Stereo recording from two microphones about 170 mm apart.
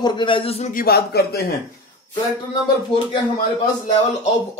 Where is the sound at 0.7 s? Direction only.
60° left (ahead or behind).